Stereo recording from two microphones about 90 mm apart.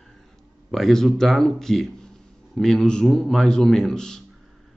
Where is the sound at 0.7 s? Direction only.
5° left (ahead or behind).